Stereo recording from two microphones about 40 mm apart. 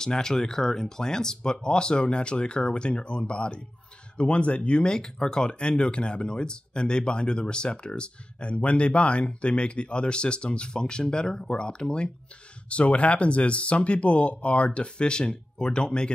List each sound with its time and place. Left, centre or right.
0.0 s speech: centre
12.6 s speech: left